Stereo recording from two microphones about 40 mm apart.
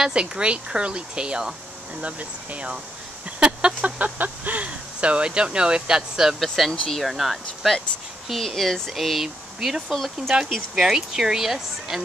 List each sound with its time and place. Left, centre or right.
0.1 s speech: right
2.0 s speech: right; by 6.3 s centre
6.4 s speech: centre
8.9 s speech: centre